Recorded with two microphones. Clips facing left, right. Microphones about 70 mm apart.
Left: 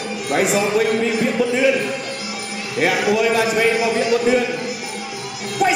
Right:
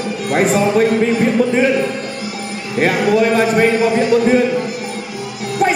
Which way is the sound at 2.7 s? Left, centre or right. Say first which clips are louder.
Right 4 dB; right.